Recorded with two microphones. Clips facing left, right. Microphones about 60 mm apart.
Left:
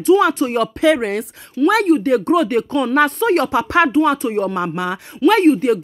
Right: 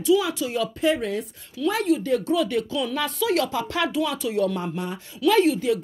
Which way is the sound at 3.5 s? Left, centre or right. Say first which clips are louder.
Left 10 dB; left.